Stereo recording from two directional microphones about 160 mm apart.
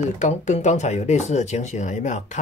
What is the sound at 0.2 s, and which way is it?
Speech, 50° left (ahead or behind).